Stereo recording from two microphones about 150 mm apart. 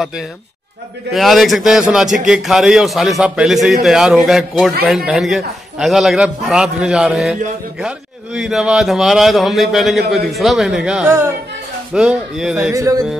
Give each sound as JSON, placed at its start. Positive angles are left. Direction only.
{"t": 1.1, "sound": "a man's voice", "side_deg": 0}
{"t": 8.4, "sound": "a man's voice", "side_deg": 0}
{"t": 12.7, "sound": "speech", "side_deg": -20}